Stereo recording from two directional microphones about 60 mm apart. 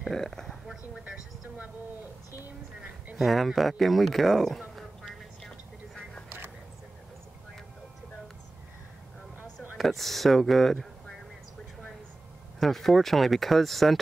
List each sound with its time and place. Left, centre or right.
0.1 s speech: centre
0.5 s a sound: centre
3.2 s speech: centre
9.8 s speech: centre
12.5 s speech: centre